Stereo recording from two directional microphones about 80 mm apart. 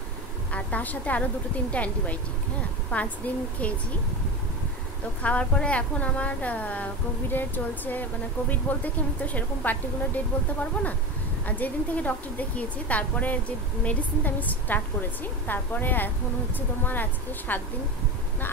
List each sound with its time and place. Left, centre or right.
0.5 s a woman's voice: centre
5.2 s a woman's voice: centre